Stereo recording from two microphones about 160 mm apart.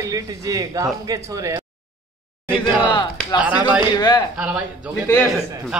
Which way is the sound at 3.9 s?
25° left (ahead or behind).